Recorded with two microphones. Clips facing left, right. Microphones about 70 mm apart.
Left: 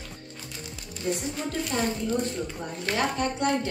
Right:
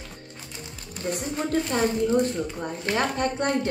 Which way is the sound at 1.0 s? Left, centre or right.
Right.